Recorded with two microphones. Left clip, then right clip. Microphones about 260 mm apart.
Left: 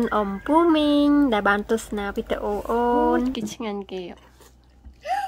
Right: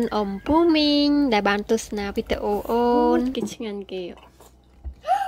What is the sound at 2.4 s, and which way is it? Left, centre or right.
Speech, centre.